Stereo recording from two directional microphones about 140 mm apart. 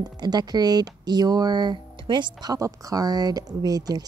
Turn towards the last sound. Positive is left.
turn(degrees=-25)  # may be behind; listen again after turning